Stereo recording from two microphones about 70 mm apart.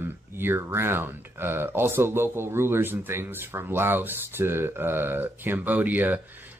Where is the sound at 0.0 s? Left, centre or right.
Right.